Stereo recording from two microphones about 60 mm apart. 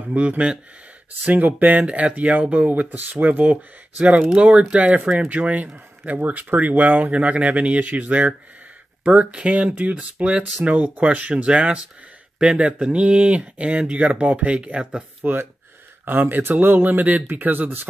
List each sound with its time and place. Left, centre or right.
0.1 s speech: right
16.1 s speech: right